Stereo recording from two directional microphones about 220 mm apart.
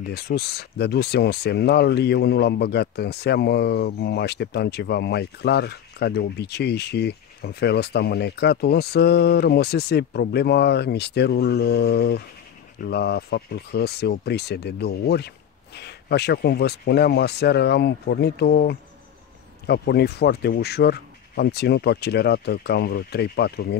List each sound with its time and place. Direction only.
0.1 s speech: 50° left (ahead or behind)